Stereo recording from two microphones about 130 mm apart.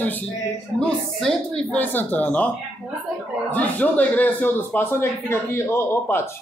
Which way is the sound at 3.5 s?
10° left (ahead or behind).